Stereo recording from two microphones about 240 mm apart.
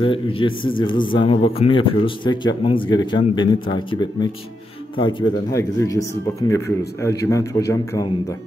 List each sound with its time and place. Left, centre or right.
0.0 s a man's voice: left